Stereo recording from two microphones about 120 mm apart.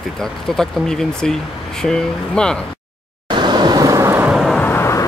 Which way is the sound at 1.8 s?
5° left (ahead or behind).